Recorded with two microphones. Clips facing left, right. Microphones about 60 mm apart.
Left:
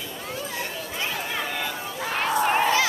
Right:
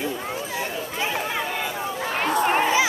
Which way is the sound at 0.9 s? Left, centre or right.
Centre.